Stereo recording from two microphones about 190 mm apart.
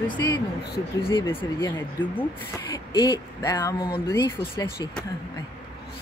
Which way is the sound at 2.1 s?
10° left (ahead or behind).